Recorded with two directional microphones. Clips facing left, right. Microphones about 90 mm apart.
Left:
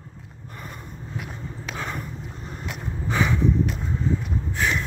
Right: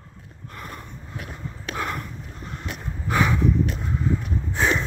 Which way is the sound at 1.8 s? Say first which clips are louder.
Right 3 dB; centre (ahead or behind).